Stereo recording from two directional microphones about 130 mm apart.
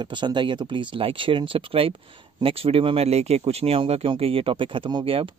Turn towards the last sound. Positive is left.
turn(degrees=-45)  # may be behind; listen again after turning